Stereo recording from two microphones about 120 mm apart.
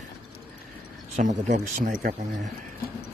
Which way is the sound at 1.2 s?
90° right.